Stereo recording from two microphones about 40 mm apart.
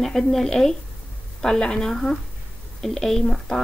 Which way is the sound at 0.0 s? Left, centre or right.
Centre.